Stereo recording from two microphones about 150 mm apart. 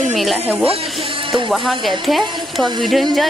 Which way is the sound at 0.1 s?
Centre (ahead or behind).